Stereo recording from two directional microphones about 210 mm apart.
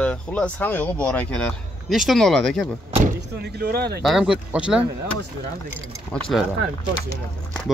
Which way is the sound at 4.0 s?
Centre (ahead or behind).